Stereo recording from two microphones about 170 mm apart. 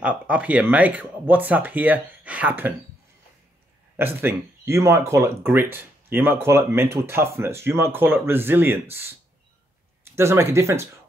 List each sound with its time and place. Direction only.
0.0 s speech: 10° right (ahead or behind)
3.9 s speech: 15° right (ahead or behind)
10.1 s speech: 15° right (ahead or behind)